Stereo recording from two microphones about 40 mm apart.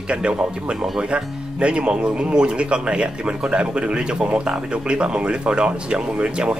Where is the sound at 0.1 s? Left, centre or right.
Right.